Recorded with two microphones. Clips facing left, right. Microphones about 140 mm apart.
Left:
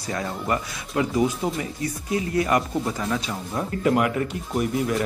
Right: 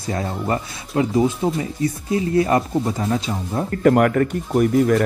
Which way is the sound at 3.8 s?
50° right (ahead or behind).